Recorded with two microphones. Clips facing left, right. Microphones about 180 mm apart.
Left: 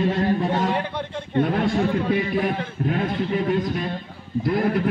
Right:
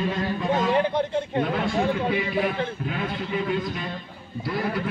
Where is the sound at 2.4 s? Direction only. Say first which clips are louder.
Left 2 dB; 45° left (ahead or behind).